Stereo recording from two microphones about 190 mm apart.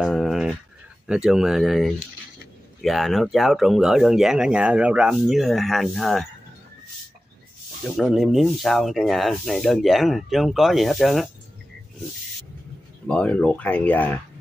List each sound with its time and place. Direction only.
0.0 s a sound: centre (ahead or behind)
1.0 s speech: 5° right (ahead or behind)
8.0 s speech: centre (ahead or behind)
13.0 s speech: 5° left (ahead or behind)